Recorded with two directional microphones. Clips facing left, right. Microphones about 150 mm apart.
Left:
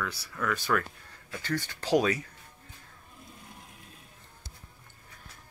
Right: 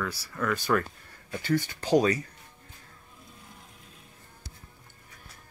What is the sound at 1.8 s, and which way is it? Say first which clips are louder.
Speech: right 1 dB; centre (ahead or behind).